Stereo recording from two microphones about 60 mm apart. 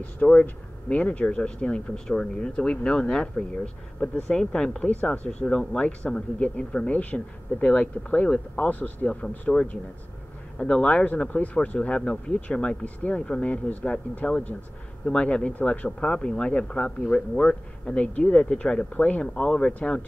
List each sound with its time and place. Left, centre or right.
0.0 s speech: left
4.8 s speech: left
5.5 s speech: centre